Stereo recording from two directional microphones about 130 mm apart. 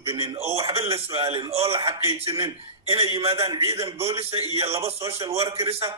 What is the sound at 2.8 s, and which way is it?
Speech, 45° right (ahead or behind).